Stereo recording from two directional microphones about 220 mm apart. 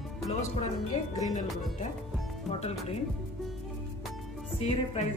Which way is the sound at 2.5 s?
25° left (ahead or behind).